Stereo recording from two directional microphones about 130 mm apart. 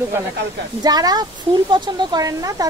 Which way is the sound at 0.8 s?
30° right (ahead or behind).